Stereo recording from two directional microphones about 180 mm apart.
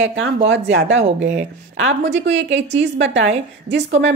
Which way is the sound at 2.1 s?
90° right.